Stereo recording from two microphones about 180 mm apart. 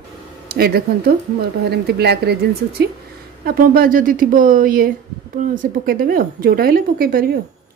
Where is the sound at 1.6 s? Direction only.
65° right (ahead or behind).